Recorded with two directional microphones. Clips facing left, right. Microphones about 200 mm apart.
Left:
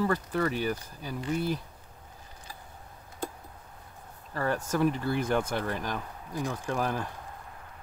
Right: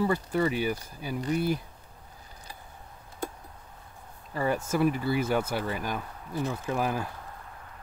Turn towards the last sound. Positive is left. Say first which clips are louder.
# right 1 dB
turn(degrees=-10)  # may be behind; listen again after turning